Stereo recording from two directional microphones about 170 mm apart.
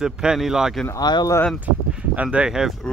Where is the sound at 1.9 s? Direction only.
5° right (ahead or behind).